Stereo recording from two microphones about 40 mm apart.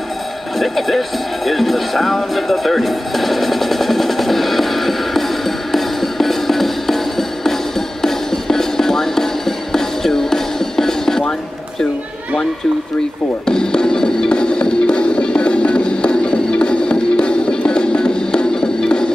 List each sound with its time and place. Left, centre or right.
0.6 s music: centre
13.5 s music: centre